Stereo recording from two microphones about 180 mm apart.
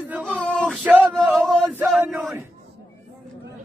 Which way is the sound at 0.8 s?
10° right (ahead or behind).